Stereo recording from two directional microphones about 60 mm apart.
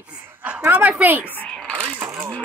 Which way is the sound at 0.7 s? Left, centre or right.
Right.